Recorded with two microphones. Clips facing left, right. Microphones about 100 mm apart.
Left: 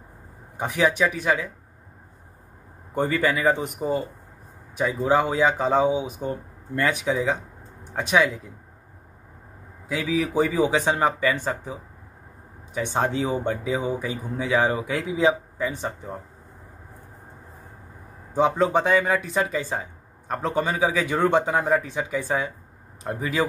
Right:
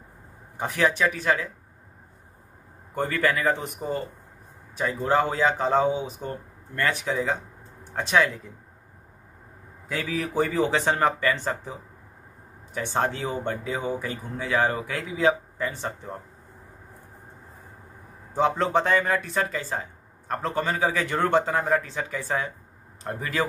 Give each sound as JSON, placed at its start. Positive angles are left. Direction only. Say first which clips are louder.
{"t": 0.6, "sound": "speech", "louder": "left 2 dB", "side_deg": 15}
{"t": 2.9, "sound": "speech", "louder": "left 2 dB", "side_deg": 15}
{"t": 9.8, "sound": "speech", "louder": "left 4 dB", "side_deg": 10}
{"t": 18.3, "sound": "speech", "louder": "left 2 dB", "side_deg": 5}